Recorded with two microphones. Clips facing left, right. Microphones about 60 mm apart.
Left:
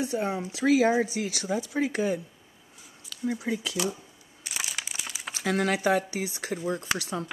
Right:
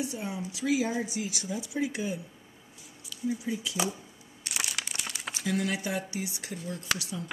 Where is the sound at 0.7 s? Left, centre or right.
Left.